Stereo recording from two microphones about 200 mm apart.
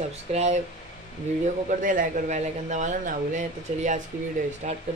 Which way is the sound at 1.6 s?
40° right (ahead or behind).